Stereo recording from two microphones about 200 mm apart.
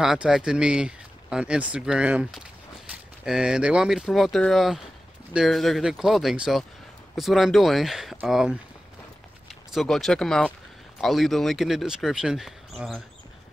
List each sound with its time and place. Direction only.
0.0 s speech: centre (ahead or behind)